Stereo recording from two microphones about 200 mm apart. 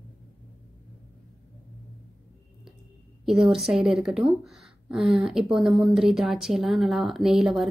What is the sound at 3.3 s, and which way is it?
A woman's voice, centre (ahead or behind).